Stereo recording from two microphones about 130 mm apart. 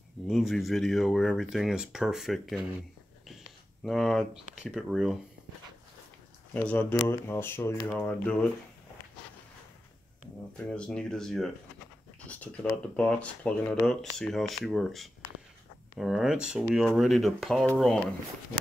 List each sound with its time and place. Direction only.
0.3 s speech: centre (ahead or behind)
3.8 s speech: 5° left (ahead or behind)
6.5 s speech: 10° left (ahead or behind)
10.7 s speech: 5° left (ahead or behind)
12.9 s speech: 10° left (ahead or behind)